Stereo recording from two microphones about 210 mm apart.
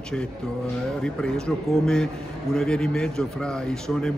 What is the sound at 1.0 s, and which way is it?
A man's voice, centre (ahead or behind).